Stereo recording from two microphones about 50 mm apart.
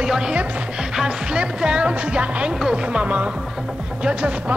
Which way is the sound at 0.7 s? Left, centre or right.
Centre.